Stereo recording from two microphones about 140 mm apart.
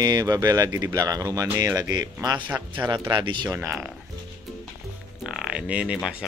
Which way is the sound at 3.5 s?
15° right (ahead or behind).